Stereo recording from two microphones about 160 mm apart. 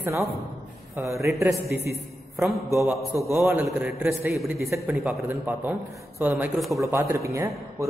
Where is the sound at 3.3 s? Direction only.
10° right (ahead or behind).